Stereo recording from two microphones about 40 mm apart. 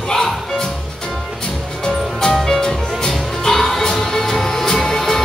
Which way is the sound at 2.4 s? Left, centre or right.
Centre.